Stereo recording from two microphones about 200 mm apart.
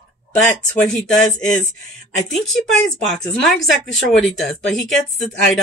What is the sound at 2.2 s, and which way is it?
Speech, centre (ahead or behind).